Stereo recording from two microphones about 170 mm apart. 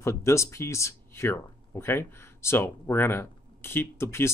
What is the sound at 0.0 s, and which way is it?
Speech, 15° left (ahead or behind).